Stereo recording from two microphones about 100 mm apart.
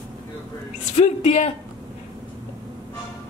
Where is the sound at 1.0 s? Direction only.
90° left.